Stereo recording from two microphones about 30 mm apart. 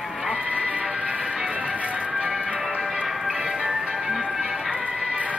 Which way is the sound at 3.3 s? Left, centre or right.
Right.